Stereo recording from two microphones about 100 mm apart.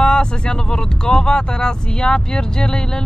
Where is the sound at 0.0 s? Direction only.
10° left (ahead or behind).